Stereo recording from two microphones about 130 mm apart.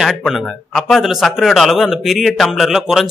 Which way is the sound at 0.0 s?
Centre (ahead or behind).